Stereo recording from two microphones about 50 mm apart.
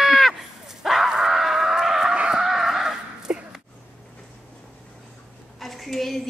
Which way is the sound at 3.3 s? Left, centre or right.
Right.